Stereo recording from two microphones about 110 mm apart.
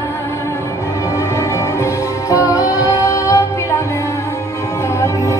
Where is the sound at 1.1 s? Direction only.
25° left (ahead or behind).